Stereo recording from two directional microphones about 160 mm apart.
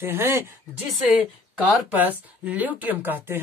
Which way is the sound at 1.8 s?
10° right (ahead or behind).